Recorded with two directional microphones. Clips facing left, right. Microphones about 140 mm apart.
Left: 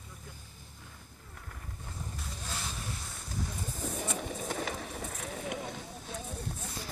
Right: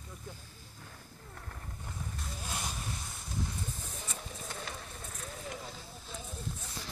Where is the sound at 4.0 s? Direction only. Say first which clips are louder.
Left 8 dB; 70° left (ahead or behind).